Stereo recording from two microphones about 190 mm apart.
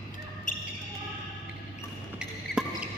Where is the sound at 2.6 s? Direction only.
5° right (ahead or behind).